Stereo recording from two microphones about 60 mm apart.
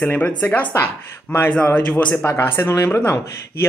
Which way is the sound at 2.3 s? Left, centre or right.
Left.